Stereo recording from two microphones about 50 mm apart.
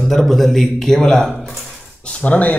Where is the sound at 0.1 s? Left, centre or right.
Centre.